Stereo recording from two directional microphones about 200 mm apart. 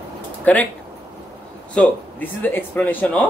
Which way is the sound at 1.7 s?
10° left (ahead or behind).